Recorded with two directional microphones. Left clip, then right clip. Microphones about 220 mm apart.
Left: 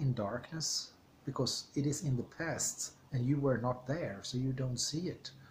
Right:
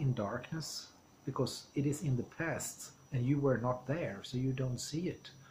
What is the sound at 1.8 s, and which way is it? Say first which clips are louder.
Speech: even; centre (ahead or behind).